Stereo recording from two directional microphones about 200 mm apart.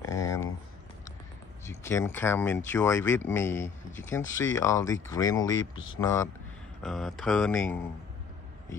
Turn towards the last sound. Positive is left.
turn(degrees=5)  # may be behind; listen again after turning